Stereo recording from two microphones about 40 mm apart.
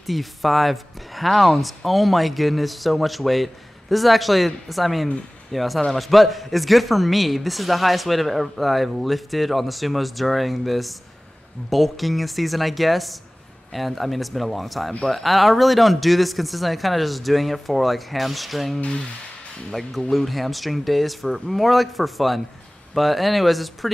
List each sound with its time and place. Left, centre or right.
0.0 s speech: centre
18.8 s speech: left
19.7 s speech: centre